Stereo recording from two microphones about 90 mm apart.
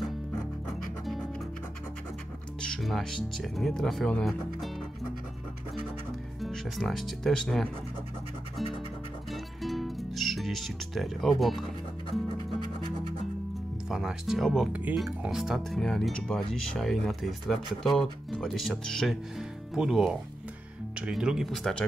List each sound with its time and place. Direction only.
2.6 s speech: 5° left (ahead or behind)
6.4 s speech: centre (ahead or behind)
9.3 s music: centre (ahead or behind)
12.5 s music: 55° left (ahead or behind)
13.8 s speech: 5° right (ahead or behind)
14.7 s speech: 15° right (ahead or behind)
15.2 s speech: 5° right (ahead or behind)
21.5 s speech: 5° left (ahead or behind)